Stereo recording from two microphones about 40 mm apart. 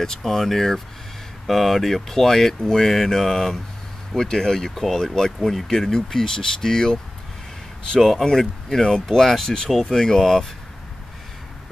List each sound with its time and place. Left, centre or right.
0.2 s speech: centre
8.0 s speech: centre